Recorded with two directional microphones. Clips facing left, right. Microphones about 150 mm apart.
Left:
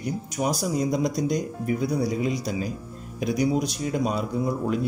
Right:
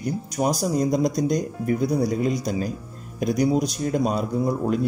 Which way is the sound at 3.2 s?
40° right (ahead or behind).